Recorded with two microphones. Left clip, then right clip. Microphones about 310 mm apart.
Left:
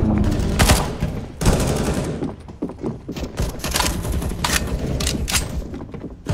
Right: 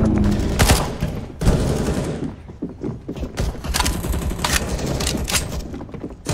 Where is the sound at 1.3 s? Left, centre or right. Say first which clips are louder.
Left 1 dB; centre.